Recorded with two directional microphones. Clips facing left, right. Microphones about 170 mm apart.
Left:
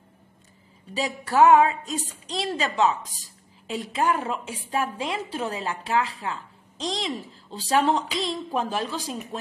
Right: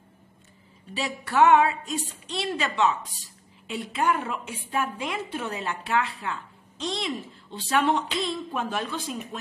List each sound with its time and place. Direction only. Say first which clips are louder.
0.9 s a woman's voice: left 2 dB; 40° left (ahead or behind)